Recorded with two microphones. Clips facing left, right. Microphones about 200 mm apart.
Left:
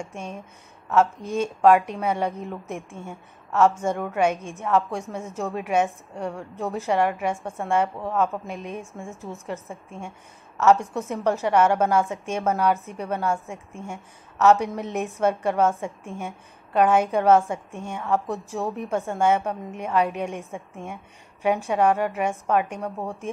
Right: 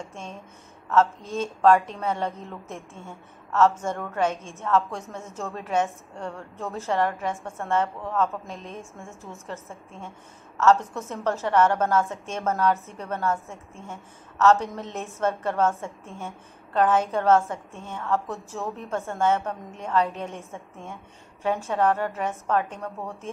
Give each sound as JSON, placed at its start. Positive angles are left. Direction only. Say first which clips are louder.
{"t": 0.0, "sound": "a woman's voice", "louder": "left 4 dB", "side_deg": 15}